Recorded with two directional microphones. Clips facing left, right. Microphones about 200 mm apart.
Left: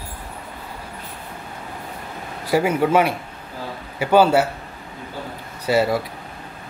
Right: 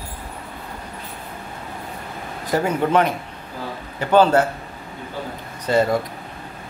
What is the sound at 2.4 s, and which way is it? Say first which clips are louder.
Speech: left 2 dB; 10° left (ahead or behind).